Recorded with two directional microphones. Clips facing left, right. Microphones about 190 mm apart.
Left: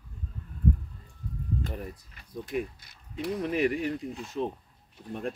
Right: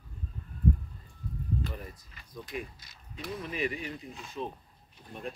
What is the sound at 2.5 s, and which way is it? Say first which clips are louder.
Speech: left 8 dB; 55° left (ahead or behind).